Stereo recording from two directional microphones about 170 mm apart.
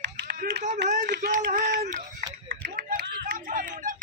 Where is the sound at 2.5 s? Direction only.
60° right (ahead or behind).